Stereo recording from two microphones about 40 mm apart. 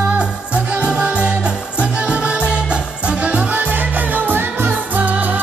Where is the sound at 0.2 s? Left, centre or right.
Right.